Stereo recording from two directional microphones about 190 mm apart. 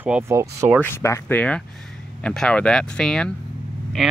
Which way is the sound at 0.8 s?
15° left (ahead or behind).